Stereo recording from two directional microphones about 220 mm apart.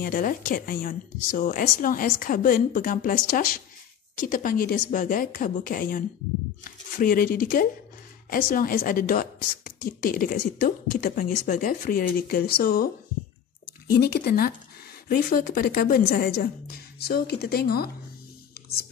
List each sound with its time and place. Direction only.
0.0 s a woman's voice: 40° left (ahead or behind)
13.9 s a woman's voice: 45° left (ahead or behind)